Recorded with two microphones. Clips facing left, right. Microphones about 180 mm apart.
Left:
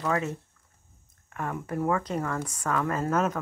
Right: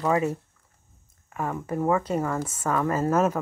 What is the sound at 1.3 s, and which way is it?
Speech, 5° right (ahead or behind).